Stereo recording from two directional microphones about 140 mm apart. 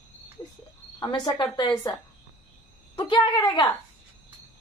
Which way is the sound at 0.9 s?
30° left (ahead or behind).